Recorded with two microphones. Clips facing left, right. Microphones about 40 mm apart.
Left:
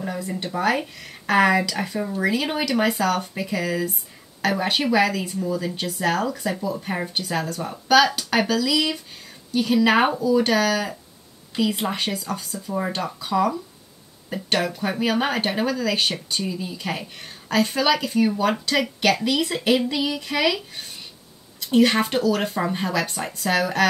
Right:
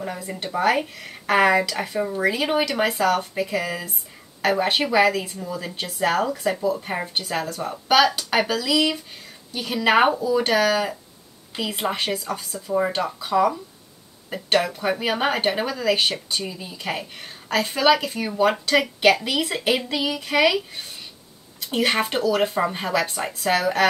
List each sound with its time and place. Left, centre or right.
0.0 s speech: centre